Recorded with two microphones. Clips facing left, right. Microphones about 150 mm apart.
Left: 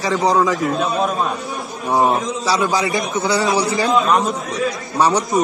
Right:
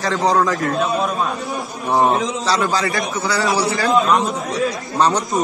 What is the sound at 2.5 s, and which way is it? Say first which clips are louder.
A man's voice: left 2 dB; 15° left (ahead or behind).